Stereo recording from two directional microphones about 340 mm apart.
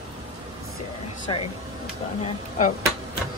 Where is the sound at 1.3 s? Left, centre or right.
Centre.